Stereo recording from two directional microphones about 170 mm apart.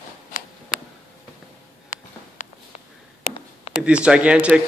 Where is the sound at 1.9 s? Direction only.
45° left (ahead or behind).